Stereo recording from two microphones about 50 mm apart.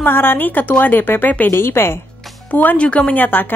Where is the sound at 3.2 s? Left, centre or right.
Left.